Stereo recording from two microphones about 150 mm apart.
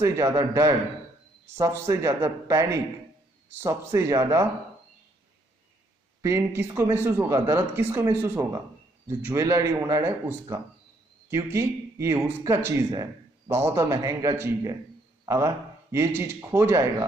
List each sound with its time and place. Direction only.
0.0 s speech: 20° right (ahead or behind)
6.2 s speech: 20° right (ahead or behind)